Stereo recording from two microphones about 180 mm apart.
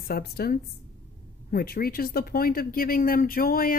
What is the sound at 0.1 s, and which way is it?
Speech, 60° left (ahead or behind).